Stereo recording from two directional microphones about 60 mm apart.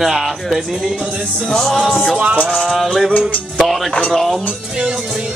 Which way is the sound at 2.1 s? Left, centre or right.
Right.